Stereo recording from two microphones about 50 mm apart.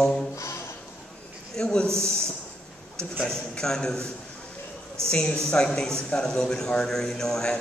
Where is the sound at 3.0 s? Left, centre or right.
Centre.